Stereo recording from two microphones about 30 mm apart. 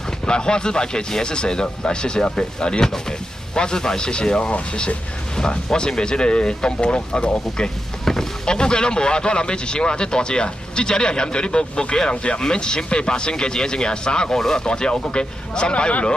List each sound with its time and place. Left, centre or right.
0.3 s speech: left
8.0 s vehicle: centre
8.5 s speech: left